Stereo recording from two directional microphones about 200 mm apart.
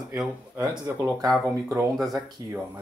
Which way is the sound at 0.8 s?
15° right (ahead or behind).